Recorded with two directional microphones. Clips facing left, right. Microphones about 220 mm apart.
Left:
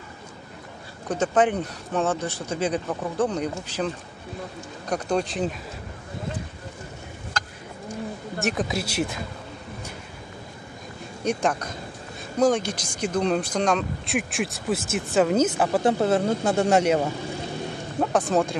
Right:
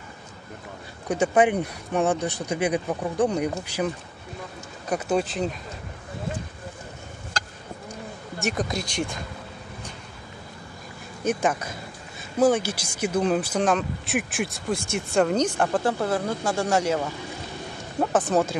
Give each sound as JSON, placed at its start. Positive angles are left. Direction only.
{"t": 1.0, "sound": "speech", "side_deg": -10}
{"t": 8.4, "sound": "speech", "side_deg": 0}
{"t": 11.2, "sound": "speech", "side_deg": -5}
{"t": 15.8, "sound": "speech", "side_deg": 25}
{"t": 18.1, "sound": "speech", "side_deg": -5}